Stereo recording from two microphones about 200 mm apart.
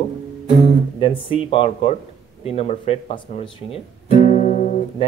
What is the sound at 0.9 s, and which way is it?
Music, 25° left (ahead or behind).